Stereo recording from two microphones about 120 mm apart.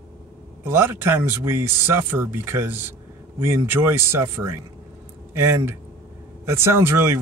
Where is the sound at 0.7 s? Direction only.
20° right (ahead or behind).